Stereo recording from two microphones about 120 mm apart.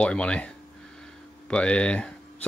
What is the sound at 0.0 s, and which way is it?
Speech, 10° left (ahead or behind).